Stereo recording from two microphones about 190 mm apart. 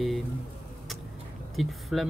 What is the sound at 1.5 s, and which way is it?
Speech, centre (ahead or behind).